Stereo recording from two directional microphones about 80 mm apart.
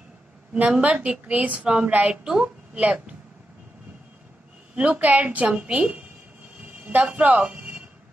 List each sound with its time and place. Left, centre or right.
0.6 s a woman's voice: centre
4.7 s a woman's voice: centre